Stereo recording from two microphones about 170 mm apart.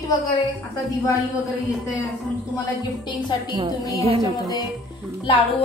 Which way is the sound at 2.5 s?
25° left (ahead or behind).